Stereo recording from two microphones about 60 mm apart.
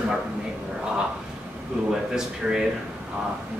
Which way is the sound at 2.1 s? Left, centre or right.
Centre.